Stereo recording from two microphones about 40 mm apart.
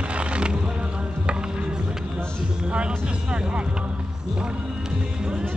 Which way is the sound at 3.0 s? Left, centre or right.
Right.